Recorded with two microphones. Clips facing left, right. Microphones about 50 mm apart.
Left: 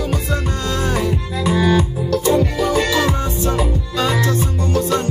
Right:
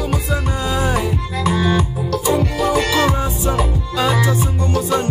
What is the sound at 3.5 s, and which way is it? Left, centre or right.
Music, centre.